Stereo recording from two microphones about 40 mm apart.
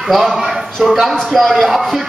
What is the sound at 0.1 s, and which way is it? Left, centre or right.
A man's voice, centre.